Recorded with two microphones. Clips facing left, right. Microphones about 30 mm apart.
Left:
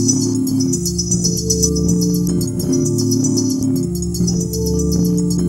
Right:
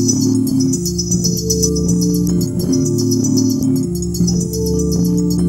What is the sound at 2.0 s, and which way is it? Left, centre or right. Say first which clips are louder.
Music: right 2 dB; left.